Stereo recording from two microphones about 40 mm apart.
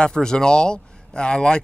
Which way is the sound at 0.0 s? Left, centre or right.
Centre.